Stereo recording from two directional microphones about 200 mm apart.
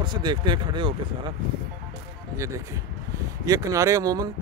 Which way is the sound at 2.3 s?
15° right (ahead or behind).